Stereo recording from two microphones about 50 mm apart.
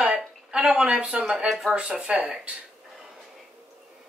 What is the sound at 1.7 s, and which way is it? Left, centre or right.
Speech, right.